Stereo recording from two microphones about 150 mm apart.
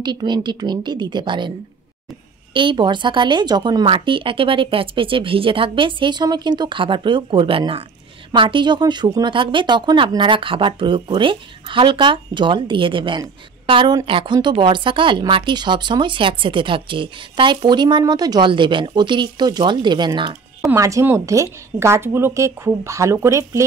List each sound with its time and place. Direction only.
0.0 s a woman's voice: 30° right (ahead or behind)
2.5 s a woman's voice: 30° right (ahead or behind)